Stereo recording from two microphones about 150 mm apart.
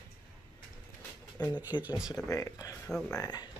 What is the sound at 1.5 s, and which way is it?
Speech, 10° right (ahead or behind).